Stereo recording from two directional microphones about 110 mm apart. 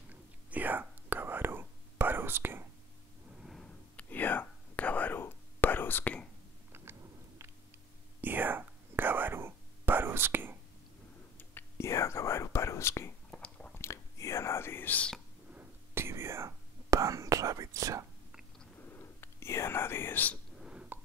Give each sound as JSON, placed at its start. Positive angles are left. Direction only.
{"t": 0.1, "sound": "whispering", "side_deg": -15}
{"t": 3.4, "sound": "sniff", "side_deg": 0}
{"t": 3.9, "sound": "whispering", "side_deg": 15}
{"t": 6.7, "sound": "a sound", "side_deg": -25}
{"t": 8.2, "sound": "whispering", "side_deg": -15}
{"t": 11.3, "sound": "whispering", "side_deg": 25}
{"t": 13.3, "sound": "chewing", "side_deg": 10}
{"t": 13.7, "sound": "whispering", "side_deg": 25}
{"t": 15.5, "sound": "whispering", "side_deg": -20}
{"t": 18.8, "sound": "whispering", "side_deg": 20}
{"t": 20.5, "sound": "a sound", "side_deg": -5}